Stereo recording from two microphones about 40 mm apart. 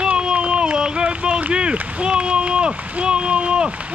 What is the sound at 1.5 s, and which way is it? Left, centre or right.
Speech, right.